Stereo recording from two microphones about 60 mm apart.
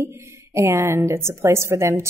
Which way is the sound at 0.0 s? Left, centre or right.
Right.